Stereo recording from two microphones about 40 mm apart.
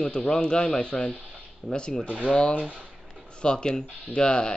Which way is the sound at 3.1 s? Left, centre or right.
Left.